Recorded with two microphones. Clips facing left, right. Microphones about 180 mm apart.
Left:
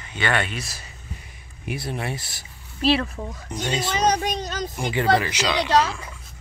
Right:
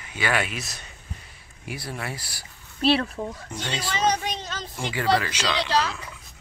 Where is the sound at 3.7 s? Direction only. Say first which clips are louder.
Left 5 dB; 20° left (ahead or behind).